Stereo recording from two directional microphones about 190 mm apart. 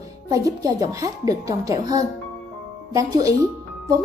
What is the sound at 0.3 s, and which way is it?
Speech, 20° right (ahead or behind).